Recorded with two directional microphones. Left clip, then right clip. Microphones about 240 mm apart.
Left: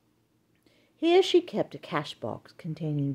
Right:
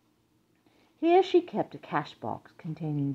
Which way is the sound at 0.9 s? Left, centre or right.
Left.